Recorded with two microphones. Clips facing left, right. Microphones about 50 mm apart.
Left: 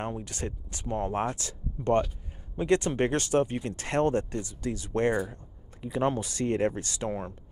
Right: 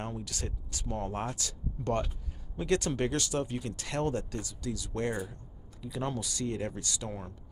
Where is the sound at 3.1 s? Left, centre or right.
Left.